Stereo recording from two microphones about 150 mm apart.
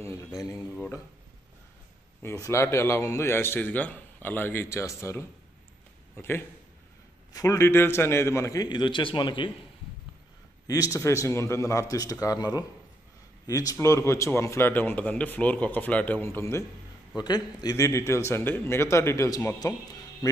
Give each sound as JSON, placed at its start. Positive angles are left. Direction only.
{"t": 0.6, "sound": "a sound", "side_deg": 5}
{"t": 2.4, "sound": "a man's voice", "side_deg": 20}
{"t": 10.7, "sound": "a man's voice", "side_deg": 20}